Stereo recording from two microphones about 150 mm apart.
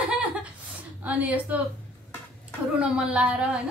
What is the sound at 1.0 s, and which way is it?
Speech, 10° right (ahead or behind).